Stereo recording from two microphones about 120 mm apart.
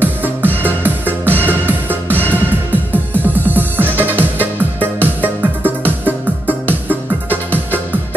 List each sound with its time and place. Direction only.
0.0 s music: 15° right (ahead or behind)